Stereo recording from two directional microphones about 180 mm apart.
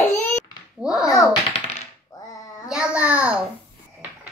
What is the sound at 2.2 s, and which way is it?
Child singing, 20° left (ahead or behind).